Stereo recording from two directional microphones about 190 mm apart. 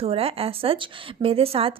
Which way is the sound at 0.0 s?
30° right (ahead or behind).